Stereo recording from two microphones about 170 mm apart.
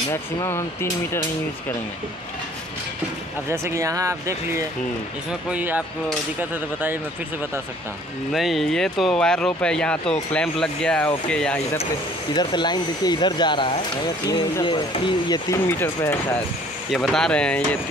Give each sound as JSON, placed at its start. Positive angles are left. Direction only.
{"t": 0.1, "sound": "speech", "side_deg": 15}
{"t": 3.4, "sound": "speech", "side_deg": -15}
{"t": 8.3, "sound": "speech", "side_deg": 0}
{"t": 12.4, "sound": "speech", "side_deg": 25}
{"t": 15.6, "sound": "speech", "side_deg": 15}
{"t": 16.9, "sound": "speech", "side_deg": 5}